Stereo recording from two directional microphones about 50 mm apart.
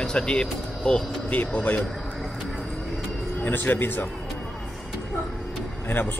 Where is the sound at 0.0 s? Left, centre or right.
Centre.